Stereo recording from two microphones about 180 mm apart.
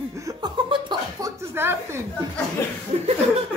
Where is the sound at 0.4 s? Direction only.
25° right (ahead or behind).